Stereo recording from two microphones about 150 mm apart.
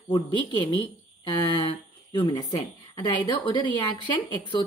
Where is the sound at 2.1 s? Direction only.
30° left (ahead or behind).